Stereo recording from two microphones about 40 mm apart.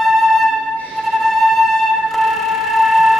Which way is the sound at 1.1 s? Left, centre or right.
Centre.